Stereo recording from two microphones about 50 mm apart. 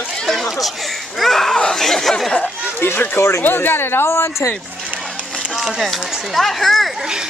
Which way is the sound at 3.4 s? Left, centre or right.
Left.